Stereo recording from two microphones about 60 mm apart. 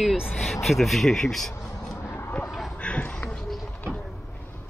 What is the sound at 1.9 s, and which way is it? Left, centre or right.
Vehicle, left.